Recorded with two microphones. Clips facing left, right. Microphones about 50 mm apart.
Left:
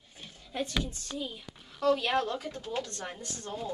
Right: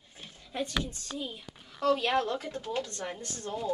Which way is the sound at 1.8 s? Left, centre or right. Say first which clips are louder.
Even; centre.